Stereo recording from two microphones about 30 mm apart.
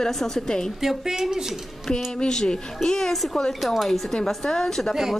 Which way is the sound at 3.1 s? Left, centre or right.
Centre.